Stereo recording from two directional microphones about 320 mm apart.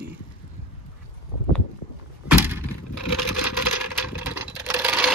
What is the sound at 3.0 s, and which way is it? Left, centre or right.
Vehicle, left.